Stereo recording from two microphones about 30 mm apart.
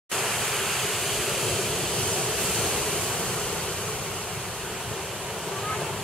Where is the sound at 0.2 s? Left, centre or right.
Centre.